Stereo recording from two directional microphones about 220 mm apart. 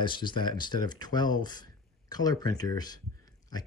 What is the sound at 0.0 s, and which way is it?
Speech, 20° left (ahead or behind).